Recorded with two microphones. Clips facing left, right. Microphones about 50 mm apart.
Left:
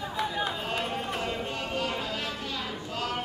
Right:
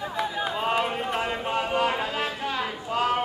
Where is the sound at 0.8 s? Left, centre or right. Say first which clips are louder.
Right 5 dB; right.